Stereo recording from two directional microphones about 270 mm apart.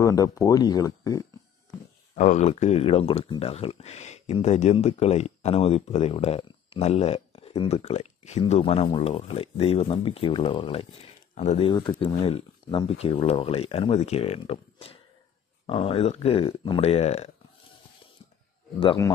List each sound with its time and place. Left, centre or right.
0.0 s speech: centre
2.1 s speech: left
18.8 s speech: centre